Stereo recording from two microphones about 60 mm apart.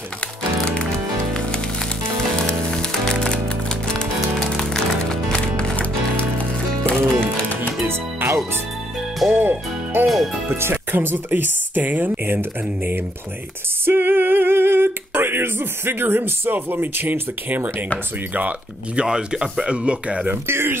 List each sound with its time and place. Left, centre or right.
0.7 s music: centre
7.3 s music: left
7.8 s music: right
9.3 s music: right
10.0 s music: centre
10.5 s speech: right
13.8 s female singing: right
18.9 s speech: centre
20.2 s speech: right